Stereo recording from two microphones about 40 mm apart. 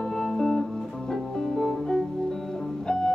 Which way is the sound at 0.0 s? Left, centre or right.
Centre.